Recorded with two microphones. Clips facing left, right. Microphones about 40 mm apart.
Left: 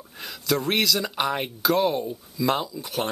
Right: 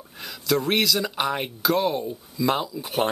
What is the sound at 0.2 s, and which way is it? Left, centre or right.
Speech, centre.